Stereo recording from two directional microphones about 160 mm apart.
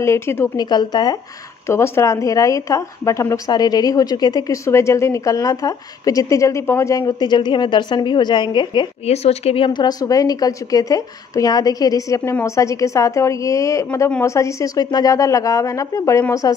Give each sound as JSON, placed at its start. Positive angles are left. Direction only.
{"t": 0.0, "sound": "a woman's voice", "side_deg": 15}
{"t": 0.7, "sound": "a woman's voice", "side_deg": 25}
{"t": 9.0, "sound": "a woman's voice", "side_deg": 40}